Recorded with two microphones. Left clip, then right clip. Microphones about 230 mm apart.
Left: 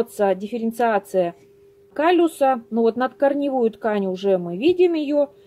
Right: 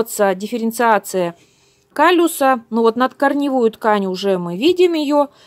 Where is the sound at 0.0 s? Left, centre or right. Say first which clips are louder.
Right 4 dB; right.